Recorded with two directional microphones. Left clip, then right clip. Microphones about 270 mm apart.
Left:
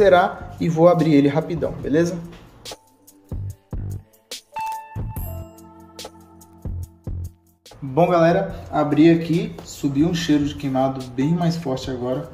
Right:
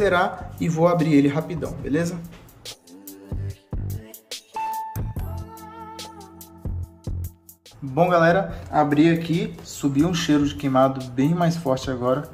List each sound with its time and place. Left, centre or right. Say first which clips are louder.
0.0 s speech: left 6 dB; centre
3.3 s music: left 3 dB; centre
5.9 s music: right 1 dB; centre
7.9 s speech: left 1 dB; centre